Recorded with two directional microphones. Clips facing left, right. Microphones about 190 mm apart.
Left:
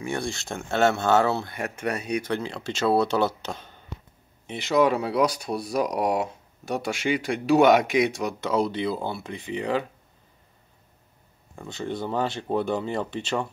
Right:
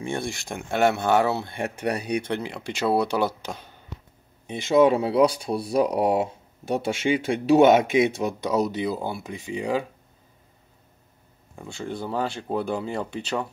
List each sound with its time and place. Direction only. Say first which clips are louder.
0.0 s speech: even; 20° right (ahead or behind)
1.5 s speech: right 2 dB; 30° right (ahead or behind)
2.4 s speech: left 1 dB; 15° right (ahead or behind)
4.6 s speech: right 3 dB; 25° right (ahead or behind)
8.4 s speech: left 1 dB; 15° right (ahead or behind)
11.5 s speech: left 1 dB; 5° right (ahead or behind)